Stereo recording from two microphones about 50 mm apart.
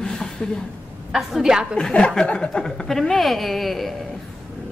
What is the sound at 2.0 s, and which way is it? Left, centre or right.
Speech, left.